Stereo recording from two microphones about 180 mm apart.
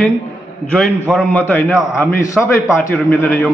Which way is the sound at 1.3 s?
10° left (ahead or behind).